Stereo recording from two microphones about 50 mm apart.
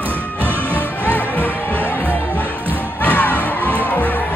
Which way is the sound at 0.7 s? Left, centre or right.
Right.